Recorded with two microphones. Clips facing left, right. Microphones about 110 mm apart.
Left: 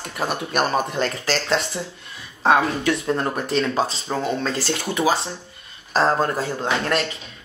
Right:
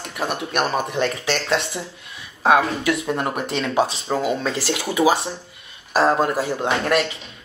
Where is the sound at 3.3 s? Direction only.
70° right (ahead or behind).